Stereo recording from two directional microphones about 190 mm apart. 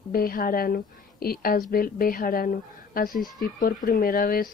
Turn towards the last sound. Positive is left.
turn(degrees=50)  # may be behind; listen again after turning